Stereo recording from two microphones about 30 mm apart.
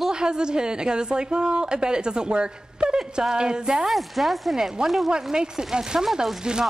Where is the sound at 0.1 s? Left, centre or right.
Right.